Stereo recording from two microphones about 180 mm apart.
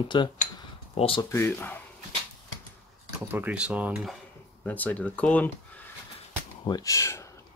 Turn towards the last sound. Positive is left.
turn(degrees=15)  # may be behind; listen again after turning